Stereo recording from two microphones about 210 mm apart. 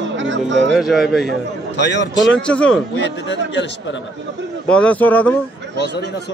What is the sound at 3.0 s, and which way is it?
Speech, 60° left (ahead or behind).